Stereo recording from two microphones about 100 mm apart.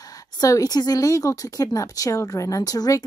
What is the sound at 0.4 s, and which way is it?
Speech, 35° left (ahead or behind).